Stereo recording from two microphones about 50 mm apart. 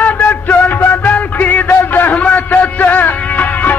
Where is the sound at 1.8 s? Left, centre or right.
Left.